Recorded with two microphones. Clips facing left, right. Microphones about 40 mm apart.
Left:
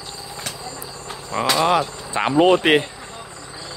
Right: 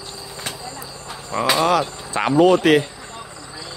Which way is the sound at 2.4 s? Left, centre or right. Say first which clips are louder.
Right 1 dB; left.